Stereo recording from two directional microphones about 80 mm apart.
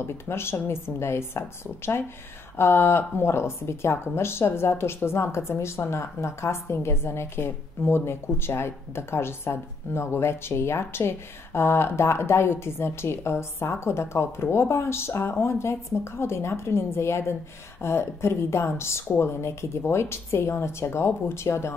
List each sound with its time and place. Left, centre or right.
0.0 s speech: left
2.5 s speech: left